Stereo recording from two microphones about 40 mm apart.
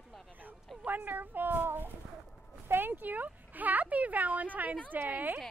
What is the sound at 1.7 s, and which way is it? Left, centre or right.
A child's voice, right.